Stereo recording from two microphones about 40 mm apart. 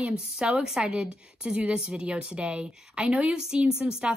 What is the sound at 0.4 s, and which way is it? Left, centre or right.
Speech, centre.